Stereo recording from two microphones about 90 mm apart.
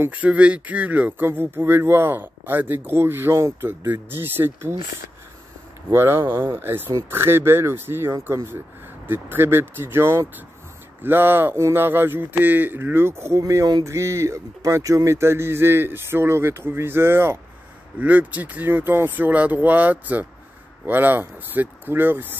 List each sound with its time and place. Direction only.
0.0 s speech: 15° right (ahead or behind)
5.9 s speech: 25° right (ahead or behind)
13.4 s speech: 40° right (ahead or behind); by 22.4 s 20° right (ahead or behind)